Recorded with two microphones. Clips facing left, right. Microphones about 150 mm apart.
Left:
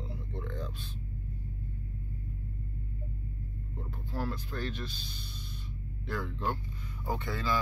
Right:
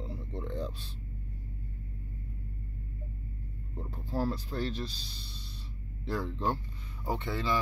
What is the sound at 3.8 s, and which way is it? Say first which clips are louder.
Speech: right 4 dB; 35° right (ahead or behind).